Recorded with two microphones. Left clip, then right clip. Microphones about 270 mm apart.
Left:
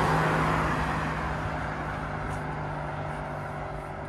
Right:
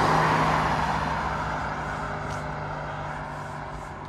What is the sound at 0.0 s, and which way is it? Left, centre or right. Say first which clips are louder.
Vehicle: right 4 dB; right.